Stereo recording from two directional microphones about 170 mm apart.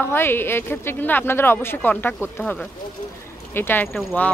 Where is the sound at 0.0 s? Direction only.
15° left (ahead or behind).